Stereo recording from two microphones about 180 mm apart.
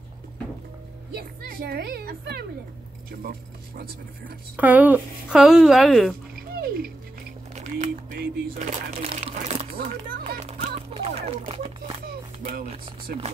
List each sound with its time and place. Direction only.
1.1 s a woman's voice: 55° right (ahead or behind)
4.6 s speech: 10° right (ahead or behind)
6.5 s music: 60° right (ahead or behind)
7.5 s speech: 40° right (ahead or behind)
9.0 s speech: 35° right (ahead or behind)
10.2 s music: 35° right (ahead or behind)
12.6 s speech: 30° right (ahead or behind)